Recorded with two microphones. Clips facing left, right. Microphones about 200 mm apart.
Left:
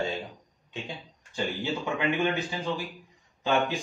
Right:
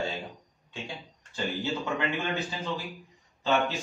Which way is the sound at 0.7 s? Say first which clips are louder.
Left 1 dB; 20° left (ahead or behind).